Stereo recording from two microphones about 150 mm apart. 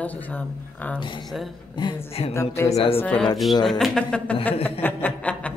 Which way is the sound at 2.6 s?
15° left (ahead or behind).